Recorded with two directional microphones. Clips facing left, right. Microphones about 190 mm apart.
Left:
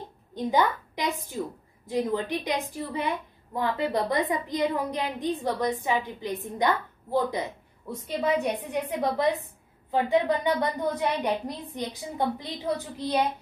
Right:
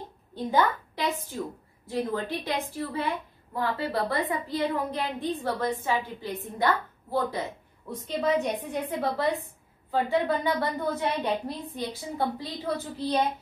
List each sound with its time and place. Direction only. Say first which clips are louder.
0.3 s a woman's voice: left 1 dB; 15° left (ahead or behind)